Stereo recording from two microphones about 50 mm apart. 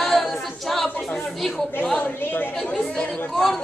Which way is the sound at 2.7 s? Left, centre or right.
Centre.